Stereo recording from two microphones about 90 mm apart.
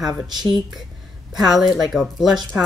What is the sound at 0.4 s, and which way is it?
A woman's voice, centre (ahead or behind).